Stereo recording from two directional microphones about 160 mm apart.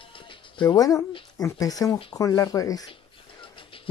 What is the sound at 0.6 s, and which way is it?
Speech, 25° left (ahead or behind).